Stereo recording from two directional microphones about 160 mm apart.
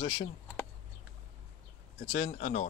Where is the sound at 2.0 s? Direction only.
50° left (ahead or behind).